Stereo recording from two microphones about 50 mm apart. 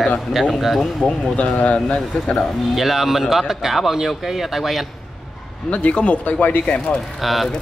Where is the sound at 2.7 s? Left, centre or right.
Centre.